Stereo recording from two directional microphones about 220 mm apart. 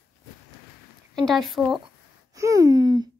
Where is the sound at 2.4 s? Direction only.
15° right (ahead or behind).